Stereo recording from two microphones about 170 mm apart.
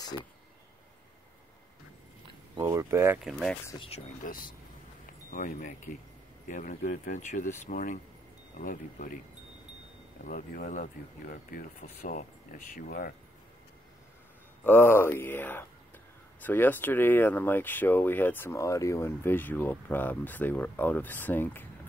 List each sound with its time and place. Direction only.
2.5 s speech: 15° right (ahead or behind)
4.2 s speech: 55° left (ahead or behind)
10.2 s speech: 60° left (ahead or behind)
14.6 s speech: 10° left (ahead or behind)